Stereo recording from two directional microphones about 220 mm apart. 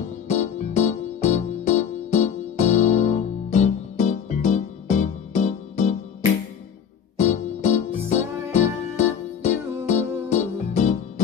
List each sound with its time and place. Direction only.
0.3 s music: 30° left (ahead or behind)
7.2 s keyboard: 30° left (ahead or behind)
8.1 s music: 30° left (ahead or behind)